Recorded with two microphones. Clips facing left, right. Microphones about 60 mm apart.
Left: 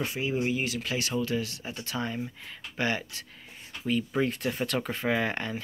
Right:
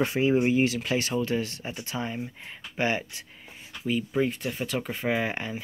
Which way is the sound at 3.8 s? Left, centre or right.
Centre.